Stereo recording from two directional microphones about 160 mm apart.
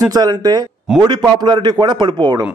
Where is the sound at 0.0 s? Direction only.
25° right (ahead or behind).